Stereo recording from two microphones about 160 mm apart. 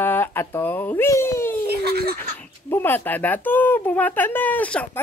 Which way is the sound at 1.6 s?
85° right.